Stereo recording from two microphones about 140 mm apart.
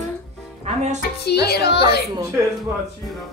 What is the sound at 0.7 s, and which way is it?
Speech, 55° right (ahead or behind).